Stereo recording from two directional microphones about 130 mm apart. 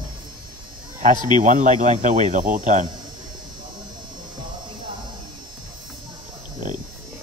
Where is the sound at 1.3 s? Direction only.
75° right (ahead or behind).